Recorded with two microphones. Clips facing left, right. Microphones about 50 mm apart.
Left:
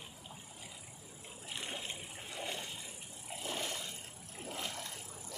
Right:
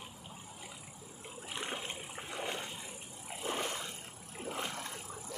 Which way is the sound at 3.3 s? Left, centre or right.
Right.